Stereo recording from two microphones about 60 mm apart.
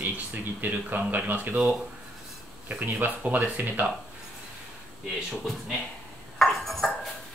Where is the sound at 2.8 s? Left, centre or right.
Right.